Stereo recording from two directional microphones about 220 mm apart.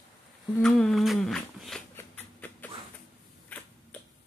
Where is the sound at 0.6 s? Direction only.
Centre (ahead or behind).